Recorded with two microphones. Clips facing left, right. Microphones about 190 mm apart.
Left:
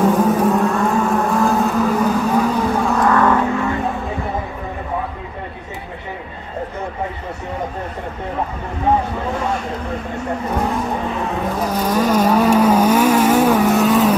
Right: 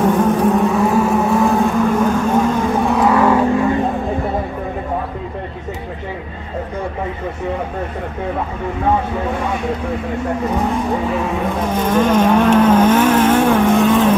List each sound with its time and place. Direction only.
0.0 s vehicle: centre (ahead or behind)
11.6 s vehicle: 25° right (ahead or behind)
11.9 s vehicle: 5° left (ahead or behind)